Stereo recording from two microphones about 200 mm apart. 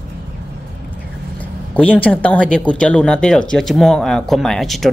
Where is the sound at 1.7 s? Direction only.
5° left (ahead or behind).